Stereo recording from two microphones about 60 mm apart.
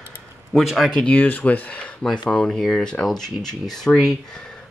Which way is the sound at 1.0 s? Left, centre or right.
Left.